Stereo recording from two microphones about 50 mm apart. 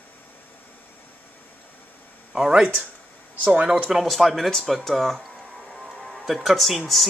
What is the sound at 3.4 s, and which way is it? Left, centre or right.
Speech, right.